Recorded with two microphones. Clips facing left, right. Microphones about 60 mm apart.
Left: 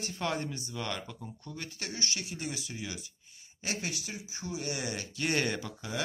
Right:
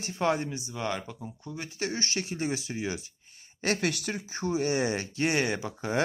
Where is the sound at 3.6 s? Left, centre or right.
Right; by 5.7 s centre.